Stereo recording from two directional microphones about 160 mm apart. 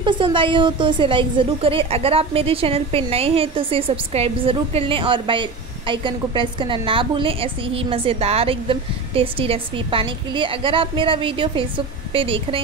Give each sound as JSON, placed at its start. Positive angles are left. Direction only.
{"t": 0.0, "sound": "a woman's voice", "side_deg": -30}